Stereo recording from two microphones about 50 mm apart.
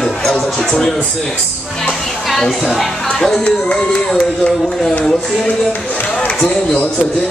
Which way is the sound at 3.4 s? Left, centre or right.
Left.